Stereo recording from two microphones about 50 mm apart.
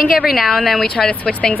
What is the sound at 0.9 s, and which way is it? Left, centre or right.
Speech, centre.